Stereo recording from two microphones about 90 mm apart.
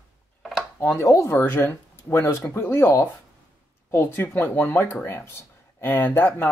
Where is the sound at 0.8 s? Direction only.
25° left (ahead or behind).